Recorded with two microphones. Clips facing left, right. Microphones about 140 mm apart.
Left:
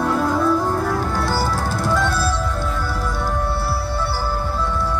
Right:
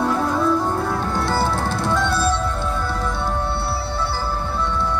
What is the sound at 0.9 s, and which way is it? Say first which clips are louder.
Music: left 1 dB; 25° right (ahead or behind).